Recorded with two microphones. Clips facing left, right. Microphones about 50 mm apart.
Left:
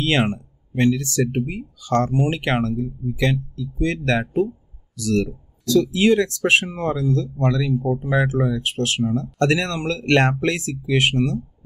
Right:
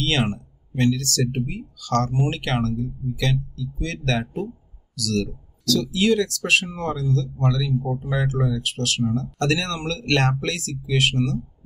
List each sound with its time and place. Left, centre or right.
0.0 s speech: left